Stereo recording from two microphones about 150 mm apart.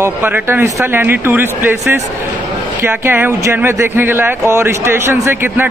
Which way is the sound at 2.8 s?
15° right (ahead or behind).